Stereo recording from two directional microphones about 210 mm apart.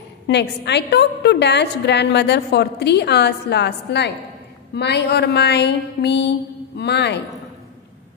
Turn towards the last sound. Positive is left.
turn(degrees=55)  # may be behind; listen again after turning